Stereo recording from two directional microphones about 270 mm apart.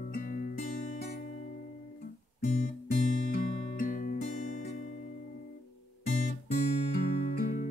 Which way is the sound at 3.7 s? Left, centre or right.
Left.